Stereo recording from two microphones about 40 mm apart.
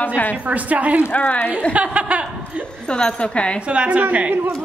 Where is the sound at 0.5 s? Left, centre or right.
Right.